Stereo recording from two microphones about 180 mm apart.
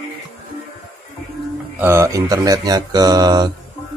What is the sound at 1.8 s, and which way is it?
Speech, 15° right (ahead or behind).